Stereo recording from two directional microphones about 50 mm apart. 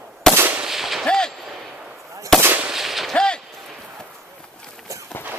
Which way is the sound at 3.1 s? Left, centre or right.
Centre.